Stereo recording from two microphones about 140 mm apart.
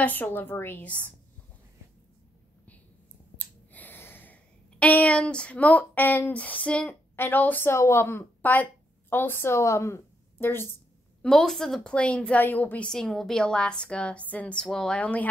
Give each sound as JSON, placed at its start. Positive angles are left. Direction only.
{"t": 0.0, "sound": "a woman's voice", "side_deg": 15}
{"t": 3.3, "sound": "a woman's voice", "side_deg": 10}
{"t": 11.2, "sound": "a woman's voice", "side_deg": 5}